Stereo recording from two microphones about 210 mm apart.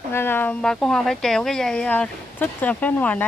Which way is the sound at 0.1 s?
10° left (ahead or behind).